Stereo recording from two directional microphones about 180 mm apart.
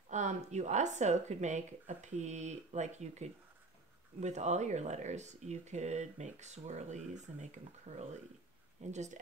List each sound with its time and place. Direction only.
0.1 s speech: 40° right (ahead or behind)